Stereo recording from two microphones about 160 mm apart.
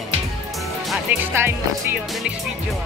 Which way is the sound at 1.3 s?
15° right (ahead or behind).